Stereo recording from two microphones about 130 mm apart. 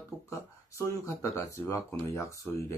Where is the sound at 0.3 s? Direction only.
25° left (ahead or behind).